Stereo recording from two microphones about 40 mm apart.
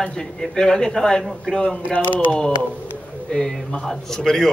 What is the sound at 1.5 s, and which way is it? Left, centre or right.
Speech, left.